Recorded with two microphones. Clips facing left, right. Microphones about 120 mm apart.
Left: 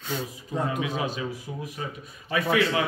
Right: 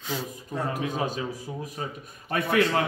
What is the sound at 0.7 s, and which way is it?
A man's voice, 45° right (ahead or behind).